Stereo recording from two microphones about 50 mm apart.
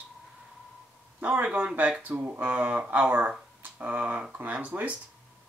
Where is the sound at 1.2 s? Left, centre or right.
Right.